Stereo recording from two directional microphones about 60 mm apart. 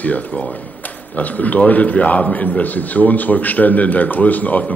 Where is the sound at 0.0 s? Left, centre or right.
Left.